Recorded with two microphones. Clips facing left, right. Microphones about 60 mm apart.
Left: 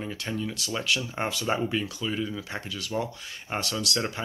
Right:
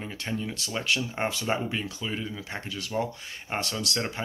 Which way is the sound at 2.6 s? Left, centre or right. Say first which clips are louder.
Right 2 dB; right.